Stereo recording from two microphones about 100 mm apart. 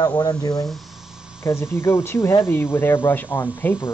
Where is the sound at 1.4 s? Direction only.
25° left (ahead or behind).